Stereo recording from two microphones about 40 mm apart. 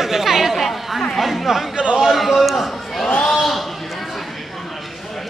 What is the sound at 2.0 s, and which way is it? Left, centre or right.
A man's voice, centre.